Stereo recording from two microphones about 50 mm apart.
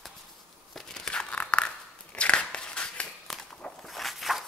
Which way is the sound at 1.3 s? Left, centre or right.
Left.